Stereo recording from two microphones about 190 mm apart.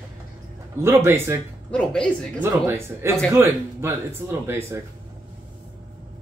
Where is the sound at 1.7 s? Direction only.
5° left (ahead or behind).